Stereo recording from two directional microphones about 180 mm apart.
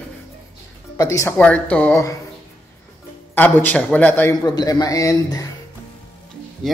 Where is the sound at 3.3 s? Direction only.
10° left (ahead or behind).